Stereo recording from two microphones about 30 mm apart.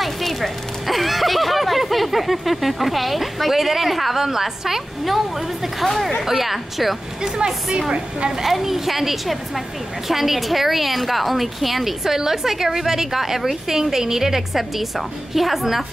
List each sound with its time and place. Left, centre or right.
0.0 s a woman's voice: centre
7.3 s a woman's voice: right
8.5 s a woman's voice: centre